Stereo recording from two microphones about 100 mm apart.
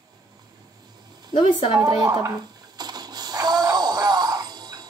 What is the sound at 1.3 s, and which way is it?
Speech, 55° left (ahead or behind).